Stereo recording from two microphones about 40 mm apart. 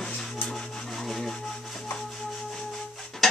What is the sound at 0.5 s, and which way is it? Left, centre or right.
Wood, centre.